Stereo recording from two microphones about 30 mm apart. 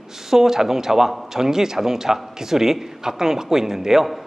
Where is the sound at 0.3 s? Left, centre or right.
Centre.